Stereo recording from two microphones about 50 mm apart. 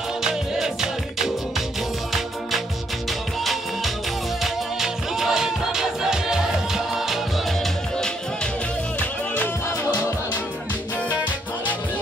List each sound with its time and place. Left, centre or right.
0.2 s music: centre
3.1 s music: centre
9.0 s music: left